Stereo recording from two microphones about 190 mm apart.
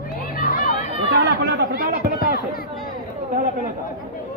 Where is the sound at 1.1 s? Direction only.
60° right (ahead or behind).